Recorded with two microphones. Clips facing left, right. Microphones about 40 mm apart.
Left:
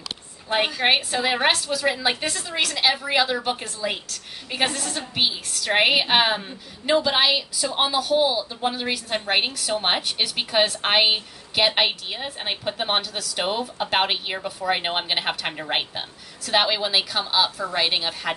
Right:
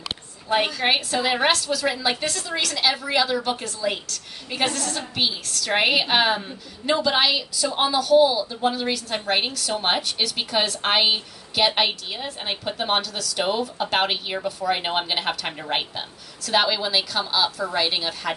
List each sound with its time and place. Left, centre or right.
0.5 s a woman's voice: left